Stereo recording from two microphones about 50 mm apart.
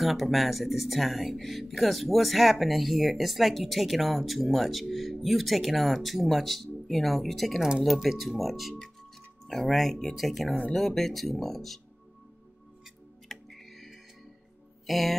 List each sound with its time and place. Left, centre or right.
0.0 s speech: centre
13.3 s music: centre
14.9 s speech: centre